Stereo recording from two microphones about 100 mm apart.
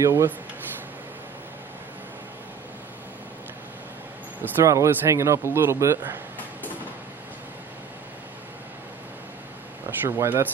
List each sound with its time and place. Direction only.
0.0 s a man's voice: 30° right (ahead or behind)
4.6 s a man's voice: 30° right (ahead or behind)
9.8 s a man's voice: 25° right (ahead or behind)